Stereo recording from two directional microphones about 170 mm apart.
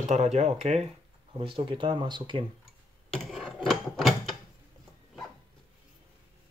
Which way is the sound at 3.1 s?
5° right (ahead or behind).